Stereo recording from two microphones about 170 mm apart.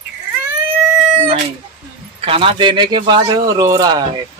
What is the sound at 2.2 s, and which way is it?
A man's voice, 35° right (ahead or behind).